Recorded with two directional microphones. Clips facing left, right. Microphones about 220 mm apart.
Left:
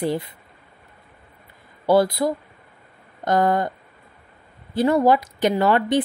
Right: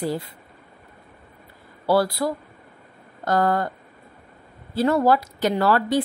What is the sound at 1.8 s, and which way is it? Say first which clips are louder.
Speech: left 3 dB; 20° left (ahead or behind).